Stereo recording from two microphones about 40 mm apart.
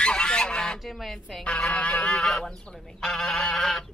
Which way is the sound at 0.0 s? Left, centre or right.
Left.